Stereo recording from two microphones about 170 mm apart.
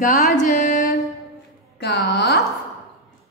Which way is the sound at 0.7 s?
65° left (ahead or behind).